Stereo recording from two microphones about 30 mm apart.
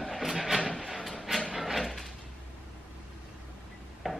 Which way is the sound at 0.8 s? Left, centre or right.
Centre.